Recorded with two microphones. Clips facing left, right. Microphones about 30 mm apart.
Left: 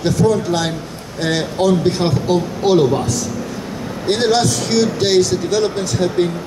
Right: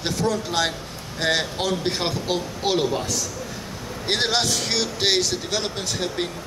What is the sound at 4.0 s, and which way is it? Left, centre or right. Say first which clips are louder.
Speech: left 7 dB; centre.